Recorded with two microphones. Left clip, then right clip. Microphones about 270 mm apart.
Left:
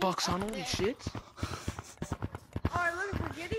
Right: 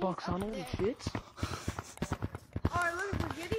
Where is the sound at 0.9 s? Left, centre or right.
Centre.